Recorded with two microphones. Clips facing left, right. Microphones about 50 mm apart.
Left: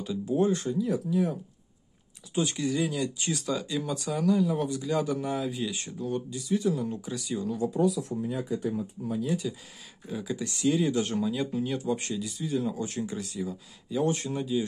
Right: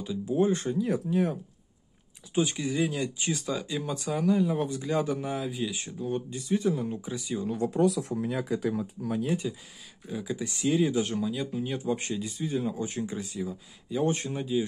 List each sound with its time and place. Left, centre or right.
0.0 s speech: centre
0.5 s speech: right
2.3 s speech: centre
5.2 s speech: centre
5.9 s speech: centre
6.3 s speech: right; by 7.4 s centre
7.4 s speech: right
7.8 s speech: right
9.4 s speech: centre
10.0 s speech: centre
11.6 s speech: centre
12.6 s speech: centre
14.0 s speech: right